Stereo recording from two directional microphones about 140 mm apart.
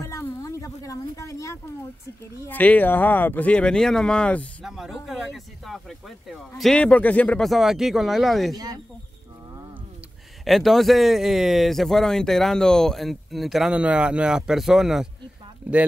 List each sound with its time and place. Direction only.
0.0 s a sound: 20° left (ahead or behind)
2.4 s speech: 10° left (ahead or behind)
4.6 s speech: centre (ahead or behind)
10.4 s speech: centre (ahead or behind)